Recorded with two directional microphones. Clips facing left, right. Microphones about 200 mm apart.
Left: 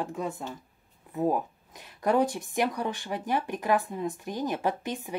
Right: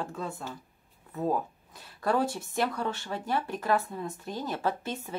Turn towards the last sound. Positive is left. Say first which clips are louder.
# left 2 dB
turn(degrees=15)  # may be behind; listen again after turning